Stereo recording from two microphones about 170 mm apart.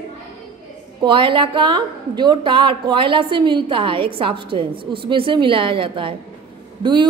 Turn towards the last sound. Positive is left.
turn(degrees=-25)  # may be behind; listen again after turning